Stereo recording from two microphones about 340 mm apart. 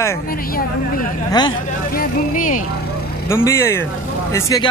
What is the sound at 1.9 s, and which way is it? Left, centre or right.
Speech, left.